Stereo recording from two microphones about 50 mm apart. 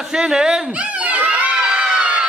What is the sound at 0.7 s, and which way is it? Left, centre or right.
Crowd, right.